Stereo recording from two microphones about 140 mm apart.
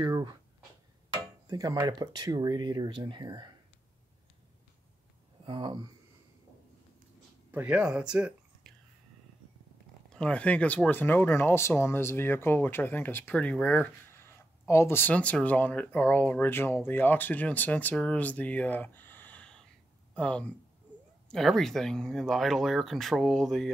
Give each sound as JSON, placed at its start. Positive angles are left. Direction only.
{"t": 0.0, "sound": "speech", "side_deg": -30}
{"t": 1.5, "sound": "speech", "side_deg": -25}
{"t": 5.4, "sound": "speech", "side_deg": -35}
{"t": 7.5, "sound": "speech", "side_deg": -10}
{"t": 10.0, "sound": "speech", "side_deg": 5}